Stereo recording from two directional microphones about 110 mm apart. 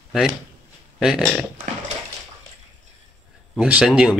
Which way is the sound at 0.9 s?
Centre (ahead or behind).